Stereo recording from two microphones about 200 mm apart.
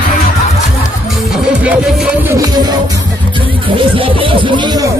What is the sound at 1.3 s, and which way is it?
Music, 5° right (ahead or behind).